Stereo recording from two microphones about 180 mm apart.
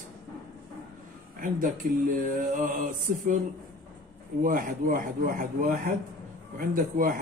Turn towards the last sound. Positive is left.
turn(degrees=-50)  # may be behind; listen again after turning